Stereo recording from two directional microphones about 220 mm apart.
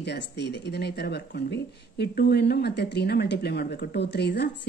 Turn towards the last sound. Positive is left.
turn(degrees=50)  # may be behind; listen again after turning